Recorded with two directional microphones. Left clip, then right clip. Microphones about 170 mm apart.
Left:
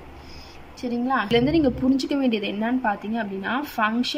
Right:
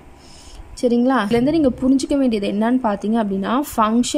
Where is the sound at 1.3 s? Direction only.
25° right (ahead or behind).